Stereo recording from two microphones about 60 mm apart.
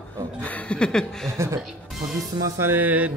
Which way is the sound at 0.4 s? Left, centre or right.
Left.